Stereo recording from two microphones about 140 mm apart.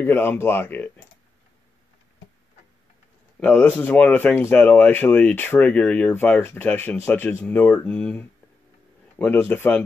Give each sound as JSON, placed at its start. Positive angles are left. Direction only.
{"t": 0.0, "sound": "speech", "side_deg": 15}
{"t": 3.3, "sound": "speech", "side_deg": 10}